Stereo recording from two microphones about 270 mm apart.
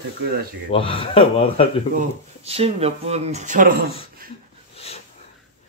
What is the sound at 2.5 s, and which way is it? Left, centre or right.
Speech, right.